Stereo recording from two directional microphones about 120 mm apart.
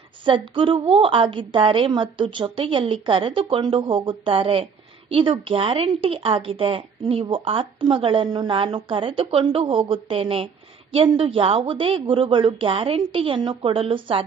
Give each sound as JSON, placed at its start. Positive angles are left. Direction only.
{"t": 0.2, "sound": "speech", "side_deg": -45}